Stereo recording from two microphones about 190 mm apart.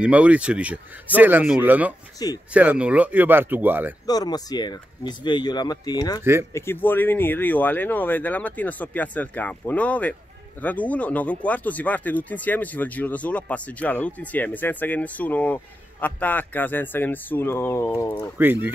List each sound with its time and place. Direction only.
0.0 s speech: 5° right (ahead or behind)
2.1 s speech: 20° left (ahead or behind)
2.5 s speech: 5° right (ahead or behind)
4.0 s speech: 20° left (ahead or behind)
18.1 s speech: 10° right (ahead or behind)